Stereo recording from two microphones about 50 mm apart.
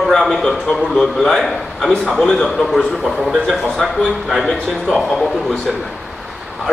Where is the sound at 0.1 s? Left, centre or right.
Centre.